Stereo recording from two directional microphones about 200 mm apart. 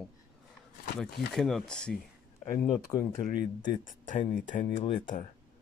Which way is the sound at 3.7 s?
40° left (ahead or behind).